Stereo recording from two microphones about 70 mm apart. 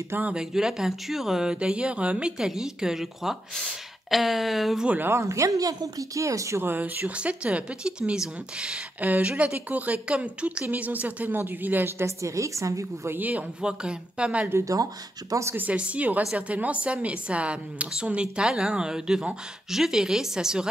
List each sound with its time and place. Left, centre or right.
0.2 s a woman's voice: centre
4.8 s speech: right
5.1 s speech: right
6.6 s speech: right
7.1 s a woman's voice: centre; by 13.1 s right
13.1 s a woman's voice: right
14.6 s speech: right
15.5 s a woman's voice: right